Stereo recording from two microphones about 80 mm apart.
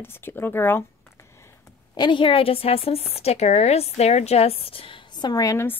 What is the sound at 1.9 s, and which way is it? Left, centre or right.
Speech, left.